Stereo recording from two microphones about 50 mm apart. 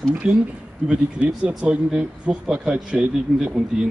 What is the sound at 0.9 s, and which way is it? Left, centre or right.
Speech, right.